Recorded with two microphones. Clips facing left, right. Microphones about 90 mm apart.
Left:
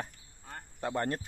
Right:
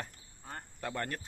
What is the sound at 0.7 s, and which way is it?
Speech, 20° left (ahead or behind).